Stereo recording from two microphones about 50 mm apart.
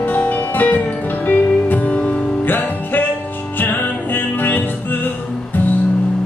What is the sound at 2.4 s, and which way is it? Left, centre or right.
Music, left.